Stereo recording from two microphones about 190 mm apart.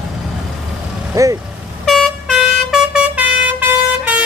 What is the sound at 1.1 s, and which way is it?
Speech, 15° right (ahead or behind).